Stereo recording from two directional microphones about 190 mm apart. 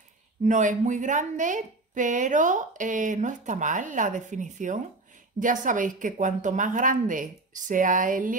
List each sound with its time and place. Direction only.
0.4 s speech: 40° right (ahead or behind)